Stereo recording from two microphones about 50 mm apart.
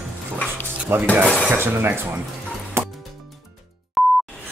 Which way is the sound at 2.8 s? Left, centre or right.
Right.